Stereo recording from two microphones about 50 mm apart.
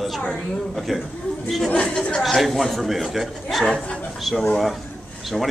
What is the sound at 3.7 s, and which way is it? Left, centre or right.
Speech, left.